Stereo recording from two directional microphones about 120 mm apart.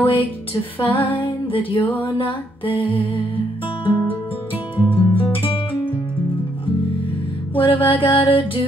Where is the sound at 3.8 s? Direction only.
40° left (ahead or behind).